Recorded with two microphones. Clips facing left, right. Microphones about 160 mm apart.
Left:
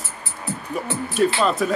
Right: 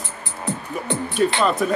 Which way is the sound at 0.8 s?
Centre (ahead or behind).